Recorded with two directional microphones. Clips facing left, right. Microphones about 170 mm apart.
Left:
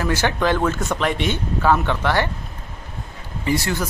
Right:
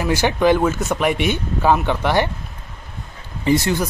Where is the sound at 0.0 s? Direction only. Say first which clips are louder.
Right 3 dB; 10° right (ahead or behind).